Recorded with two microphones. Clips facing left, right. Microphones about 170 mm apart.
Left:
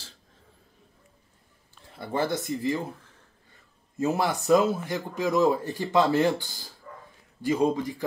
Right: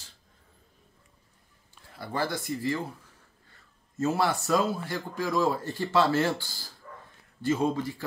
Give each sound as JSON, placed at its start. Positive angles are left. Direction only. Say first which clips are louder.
{"t": 2.0, "sound": "speech", "louder": "left 4 dB", "side_deg": 20}
{"t": 4.0, "sound": "speech", "louder": "left 1 dB", "side_deg": 15}